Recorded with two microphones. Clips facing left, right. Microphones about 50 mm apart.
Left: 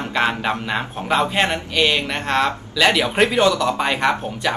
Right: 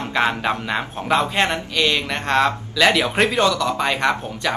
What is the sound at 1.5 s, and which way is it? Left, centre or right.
Speech, centre.